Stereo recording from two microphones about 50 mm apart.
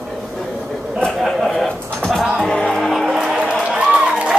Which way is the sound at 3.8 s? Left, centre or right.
Right.